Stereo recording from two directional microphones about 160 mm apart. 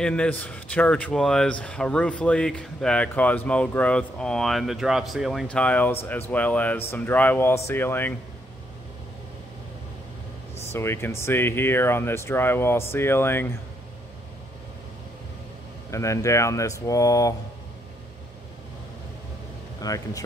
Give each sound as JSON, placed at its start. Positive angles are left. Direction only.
{"t": 0.0, "sound": "speech", "side_deg": 5}
{"t": 10.7, "sound": "speech", "side_deg": 15}
{"t": 15.9, "sound": "speech", "side_deg": 20}
{"t": 19.9, "sound": "speech", "side_deg": 25}